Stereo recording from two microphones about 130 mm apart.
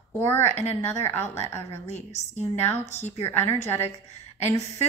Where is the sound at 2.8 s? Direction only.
60° left (ahead or behind).